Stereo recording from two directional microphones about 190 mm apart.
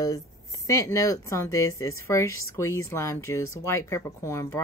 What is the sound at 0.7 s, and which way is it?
Speech, 15° left (ahead or behind).